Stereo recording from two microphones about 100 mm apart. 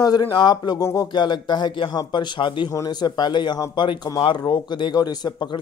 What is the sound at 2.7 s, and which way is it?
A man's voice, 40° left (ahead or behind).